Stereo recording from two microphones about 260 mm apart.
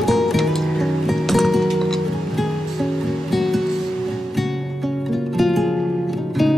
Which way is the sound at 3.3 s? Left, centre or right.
Centre.